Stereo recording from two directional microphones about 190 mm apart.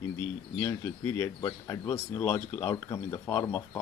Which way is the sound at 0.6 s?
15° left (ahead or behind).